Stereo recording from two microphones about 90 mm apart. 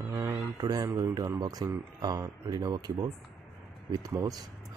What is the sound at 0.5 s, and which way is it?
Speech, 45° right (ahead or behind).